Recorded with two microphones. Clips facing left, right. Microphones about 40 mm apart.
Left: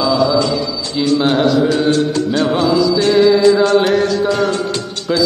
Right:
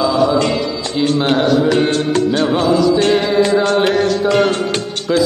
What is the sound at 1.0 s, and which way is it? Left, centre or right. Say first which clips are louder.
Mantra: left 2 dB; right.